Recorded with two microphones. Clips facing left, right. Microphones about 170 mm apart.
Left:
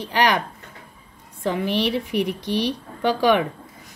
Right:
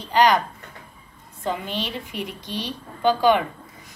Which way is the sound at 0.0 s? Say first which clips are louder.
Right 2 dB; 70° left (ahead or behind).